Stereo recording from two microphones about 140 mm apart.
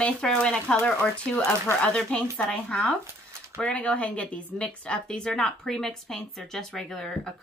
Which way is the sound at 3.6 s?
10° left (ahead or behind).